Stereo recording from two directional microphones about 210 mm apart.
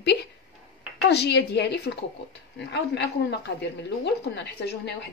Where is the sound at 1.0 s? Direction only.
50° left (ahead or behind).